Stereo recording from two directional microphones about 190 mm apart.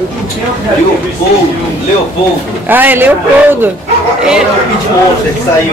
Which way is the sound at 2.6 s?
10° right (ahead or behind).